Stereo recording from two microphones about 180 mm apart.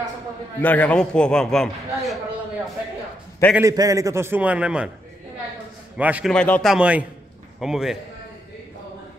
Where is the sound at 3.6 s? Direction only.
20° right (ahead or behind).